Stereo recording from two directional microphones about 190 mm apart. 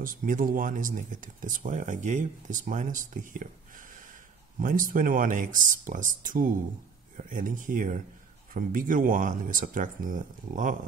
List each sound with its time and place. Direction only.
0.0 s speech: 45° right (ahead or behind)